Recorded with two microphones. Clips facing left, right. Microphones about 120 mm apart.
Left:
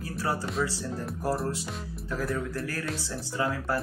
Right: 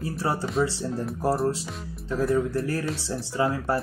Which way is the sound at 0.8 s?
Centre (ahead or behind).